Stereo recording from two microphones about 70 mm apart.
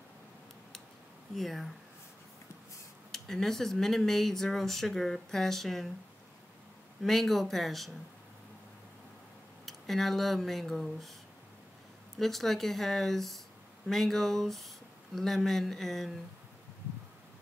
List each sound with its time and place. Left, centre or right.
1.3 s speech: centre
3.1 s speech: centre
7.0 s speech: centre
9.7 s speech: centre
12.2 s speech: centre